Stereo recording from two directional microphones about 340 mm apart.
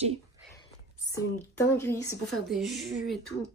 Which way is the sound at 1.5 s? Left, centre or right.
Centre.